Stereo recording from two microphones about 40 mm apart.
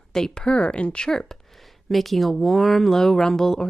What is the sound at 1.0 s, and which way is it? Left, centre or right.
Speech, centre.